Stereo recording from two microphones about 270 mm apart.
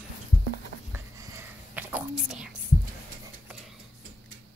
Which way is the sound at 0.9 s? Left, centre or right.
Centre.